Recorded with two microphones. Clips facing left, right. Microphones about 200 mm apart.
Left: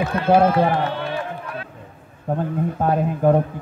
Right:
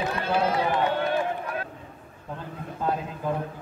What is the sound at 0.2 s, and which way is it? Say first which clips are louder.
Speech: left 10 dB; 55° left (ahead or behind).